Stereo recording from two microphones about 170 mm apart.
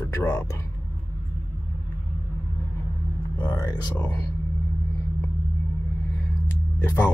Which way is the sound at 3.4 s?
15° left (ahead or behind).